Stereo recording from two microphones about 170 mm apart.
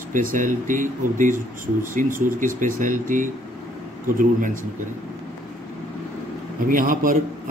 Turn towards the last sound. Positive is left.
turn(degrees=-55)  # may be behind; listen again after turning